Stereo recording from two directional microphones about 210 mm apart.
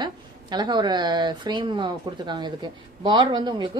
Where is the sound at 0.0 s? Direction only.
20° right (ahead or behind).